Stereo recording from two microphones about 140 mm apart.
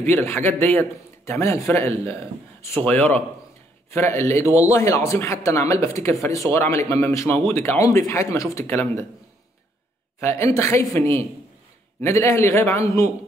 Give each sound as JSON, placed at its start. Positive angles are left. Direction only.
{"t": 0.0, "sound": "a man's voice", "side_deg": 15}
{"t": 10.2, "sound": "a man's voice", "side_deg": 20}